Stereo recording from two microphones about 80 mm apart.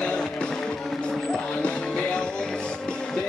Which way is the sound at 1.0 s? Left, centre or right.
Centre.